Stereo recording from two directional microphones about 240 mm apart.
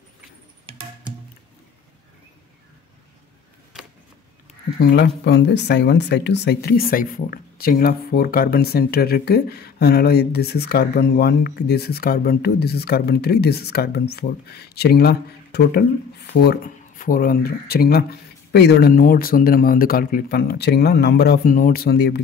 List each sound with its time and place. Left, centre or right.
4.7 s speech: left